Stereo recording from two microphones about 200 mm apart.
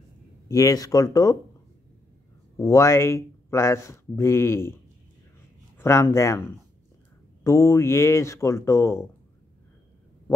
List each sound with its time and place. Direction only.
0.5 s speech: 15° left (ahead or behind)
2.5 s speech: 15° left (ahead or behind)
5.8 s speech: 15° left (ahead or behind)